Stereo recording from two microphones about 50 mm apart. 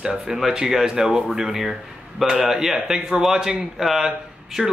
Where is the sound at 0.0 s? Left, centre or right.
Centre.